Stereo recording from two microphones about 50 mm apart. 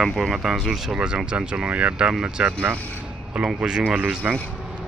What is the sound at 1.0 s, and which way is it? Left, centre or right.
Speech, centre.